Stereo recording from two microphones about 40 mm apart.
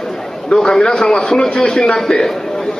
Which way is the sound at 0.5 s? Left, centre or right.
Centre.